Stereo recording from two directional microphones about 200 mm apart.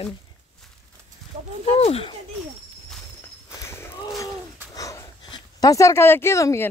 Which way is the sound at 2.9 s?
10° left (ahead or behind).